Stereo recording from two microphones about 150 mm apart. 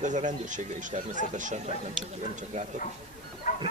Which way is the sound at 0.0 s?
55° right (ahead or behind).